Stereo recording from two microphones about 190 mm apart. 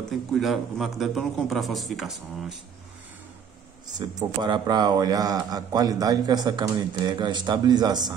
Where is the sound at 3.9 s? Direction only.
20° right (ahead or behind).